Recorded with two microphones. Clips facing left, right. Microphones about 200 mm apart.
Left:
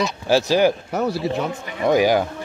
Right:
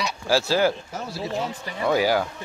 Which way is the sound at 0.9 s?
65° left (ahead or behind).